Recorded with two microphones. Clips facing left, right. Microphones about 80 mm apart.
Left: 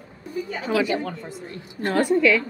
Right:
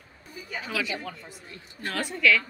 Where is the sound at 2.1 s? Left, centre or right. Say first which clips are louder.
Left 3 dB; left.